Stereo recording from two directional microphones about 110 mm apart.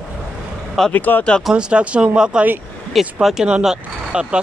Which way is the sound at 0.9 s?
15° left (ahead or behind).